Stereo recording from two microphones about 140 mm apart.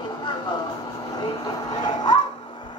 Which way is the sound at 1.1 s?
30° left (ahead or behind).